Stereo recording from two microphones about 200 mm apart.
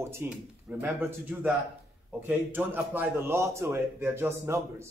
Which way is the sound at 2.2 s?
10° right (ahead or behind).